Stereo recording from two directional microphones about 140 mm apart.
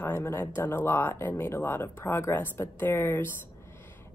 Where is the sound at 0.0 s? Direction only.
15° left (ahead or behind).